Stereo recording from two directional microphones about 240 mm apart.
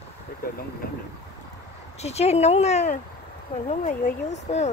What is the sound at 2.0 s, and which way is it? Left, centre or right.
Speech, left.